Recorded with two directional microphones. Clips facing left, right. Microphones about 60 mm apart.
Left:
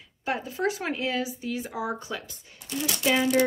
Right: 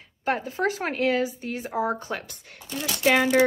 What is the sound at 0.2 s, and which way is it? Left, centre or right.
Speech, right.